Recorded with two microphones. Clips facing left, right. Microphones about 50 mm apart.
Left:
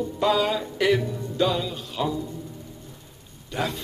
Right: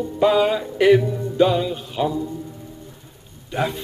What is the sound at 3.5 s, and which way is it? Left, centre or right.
Speech, right.